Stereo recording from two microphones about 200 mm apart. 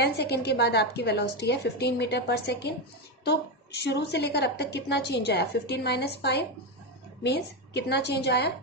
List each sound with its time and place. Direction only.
0.0 s a woman's voice: 55° left (ahead or behind)